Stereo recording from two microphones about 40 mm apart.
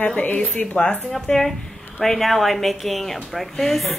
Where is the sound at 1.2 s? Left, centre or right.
Centre.